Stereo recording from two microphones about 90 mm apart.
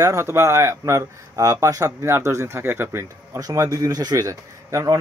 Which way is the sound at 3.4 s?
40° right (ahead or behind).